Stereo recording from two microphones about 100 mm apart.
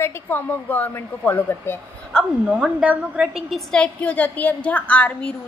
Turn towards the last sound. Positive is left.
turn(degrees=10)  # may be behind; listen again after turning